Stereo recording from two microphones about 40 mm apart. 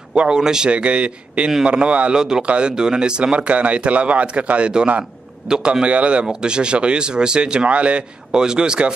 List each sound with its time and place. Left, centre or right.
0.1 s speech: right
0.7 s speech: right
2.1 s speech: centre
2.4 s speech: right
2.7 s speech: centre
3.3 s a man's voice: right
8.4 s speech: centre